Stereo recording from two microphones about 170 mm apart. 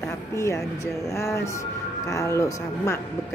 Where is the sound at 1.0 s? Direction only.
20° left (ahead or behind).